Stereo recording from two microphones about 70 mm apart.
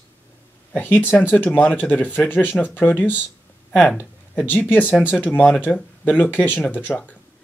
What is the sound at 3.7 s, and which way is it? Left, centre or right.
Speech, centre.